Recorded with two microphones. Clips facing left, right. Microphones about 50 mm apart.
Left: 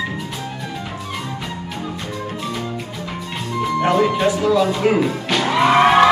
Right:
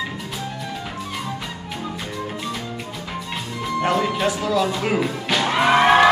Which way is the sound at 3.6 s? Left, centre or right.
Centre.